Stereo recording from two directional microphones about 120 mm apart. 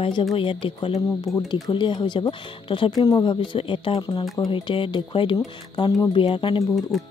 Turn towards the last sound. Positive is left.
turn(degrees=0)  # may be behind; listen again after turning